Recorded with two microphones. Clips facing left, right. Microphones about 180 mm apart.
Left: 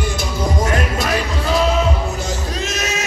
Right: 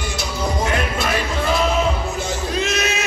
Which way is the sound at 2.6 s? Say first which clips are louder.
Right 1 dB; 45° left (ahead or behind).